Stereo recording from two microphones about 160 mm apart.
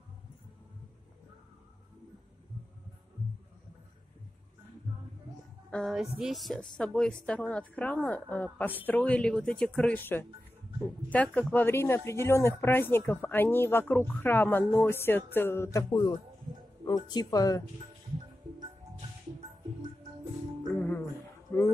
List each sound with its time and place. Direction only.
5.7 s a woman's voice: 5° left (ahead or behind); by 17.6 s 20° left (ahead or behind)
20.6 s music: 15° left (ahead or behind)
21.5 s a sound: 15° left (ahead or behind)